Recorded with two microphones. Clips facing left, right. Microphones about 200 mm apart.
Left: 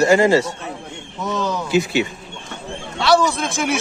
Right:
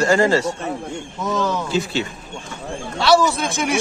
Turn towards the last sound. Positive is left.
turn(degrees=0)  # may be behind; listen again after turning